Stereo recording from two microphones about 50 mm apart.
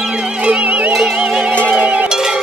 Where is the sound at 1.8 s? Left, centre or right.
Right.